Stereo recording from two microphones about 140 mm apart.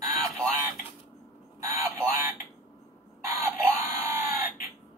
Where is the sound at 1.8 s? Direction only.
20° right (ahead or behind).